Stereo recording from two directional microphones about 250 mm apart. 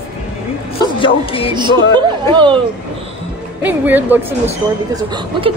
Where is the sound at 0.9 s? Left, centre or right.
Left.